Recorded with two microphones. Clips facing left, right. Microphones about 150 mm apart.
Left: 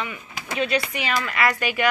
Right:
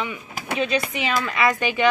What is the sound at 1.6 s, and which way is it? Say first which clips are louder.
Speech: right 2 dB; 20° right (ahead or behind).